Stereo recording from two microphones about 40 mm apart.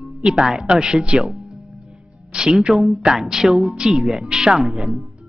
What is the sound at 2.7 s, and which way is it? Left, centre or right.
Speech, centre.